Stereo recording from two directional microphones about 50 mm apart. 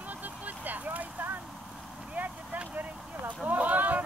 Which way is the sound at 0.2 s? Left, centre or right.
Right.